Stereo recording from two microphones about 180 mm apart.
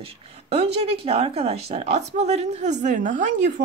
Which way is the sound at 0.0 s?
35° right (ahead or behind).